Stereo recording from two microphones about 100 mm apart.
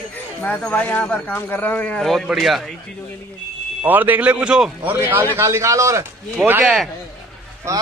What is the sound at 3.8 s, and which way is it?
A man's voice, 20° right (ahead or behind).